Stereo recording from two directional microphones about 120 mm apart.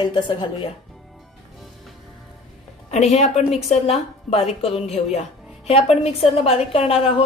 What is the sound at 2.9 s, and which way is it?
A woman's voice, 70° left (ahead or behind).